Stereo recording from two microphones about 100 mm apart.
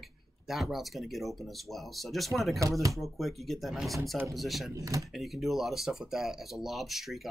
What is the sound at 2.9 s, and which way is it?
Speech, centre (ahead or behind).